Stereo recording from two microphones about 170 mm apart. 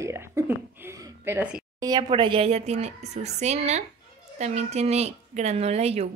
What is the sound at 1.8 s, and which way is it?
Speech, 25° right (ahead or behind).